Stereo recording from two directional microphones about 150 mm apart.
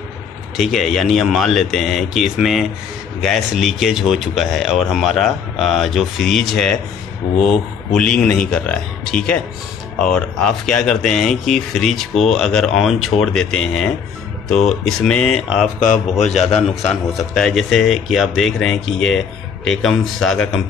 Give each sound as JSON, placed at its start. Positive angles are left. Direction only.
{"t": 0.6, "sound": "speech", "side_deg": 0}
{"t": 15.8, "sound": "speech", "side_deg": 60}
{"t": 16.3, "sound": "a man's voice", "side_deg": 45}
{"t": 17.3, "sound": "speech", "side_deg": 0}